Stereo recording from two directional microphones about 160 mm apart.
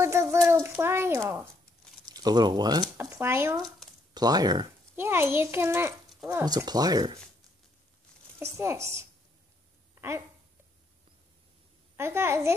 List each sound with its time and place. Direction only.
0.0 s a child's voice: 15° right (ahead or behind)
5.0 s a child's voice: 15° right (ahead or behind)
8.4 s a child's voice: 15° right (ahead or behind)
9.9 s a sound: 15° right (ahead or behind)
12.0 s a child's voice: 15° right (ahead or behind)